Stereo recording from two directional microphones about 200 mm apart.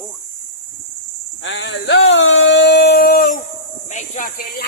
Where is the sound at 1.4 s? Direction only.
75° left (ahead or behind).